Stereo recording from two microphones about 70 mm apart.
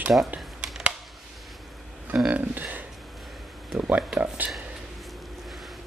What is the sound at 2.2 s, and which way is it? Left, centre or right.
Speech, right.